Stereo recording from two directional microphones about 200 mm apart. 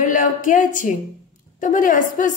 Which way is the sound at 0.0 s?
40° left (ahead or behind).